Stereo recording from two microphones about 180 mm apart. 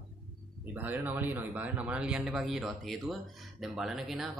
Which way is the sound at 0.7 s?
10° right (ahead or behind).